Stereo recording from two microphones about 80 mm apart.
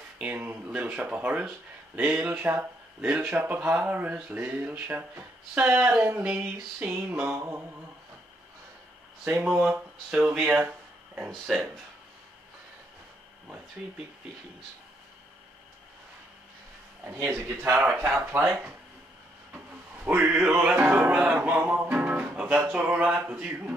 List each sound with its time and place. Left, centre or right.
0.2 s speech: right
9.4 s speech: centre
17.2 s speech: right
20.0 s speech: right
20.4 s music: centre
22.7 s speech: right